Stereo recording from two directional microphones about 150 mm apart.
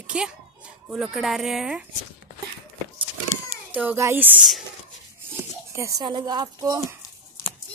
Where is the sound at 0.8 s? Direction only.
5° right (ahead or behind).